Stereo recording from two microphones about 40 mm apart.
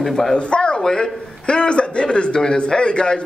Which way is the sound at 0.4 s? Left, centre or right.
Left.